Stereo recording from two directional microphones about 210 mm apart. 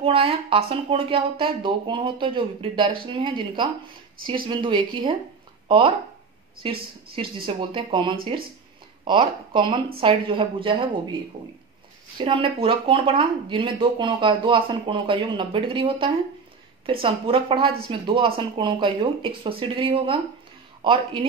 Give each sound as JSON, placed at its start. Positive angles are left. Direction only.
{"t": 0.0, "sound": "a woman's voice", "side_deg": -25}
{"t": 12.2, "sound": "speech", "side_deg": -25}